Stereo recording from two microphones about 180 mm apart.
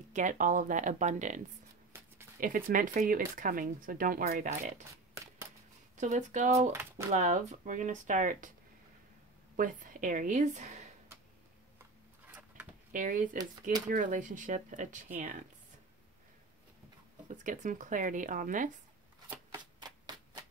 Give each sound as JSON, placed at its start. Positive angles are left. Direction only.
{"t": 0.1, "sound": "speech", "side_deg": -45}
{"t": 2.4, "sound": "speech", "side_deg": -45}
{"t": 5.1, "sound": "a sound", "side_deg": -15}
{"t": 5.9, "sound": "speech", "side_deg": -40}
{"t": 6.7, "sound": "speech", "side_deg": -15}
{"t": 7.1, "sound": "speech", "side_deg": -40}
{"t": 9.6, "sound": "speech", "side_deg": -50}
{"t": 12.9, "sound": "speech", "side_deg": -45}
{"t": 17.3, "sound": "speech", "side_deg": -45}
{"t": 19.5, "sound": "a sound", "side_deg": -20}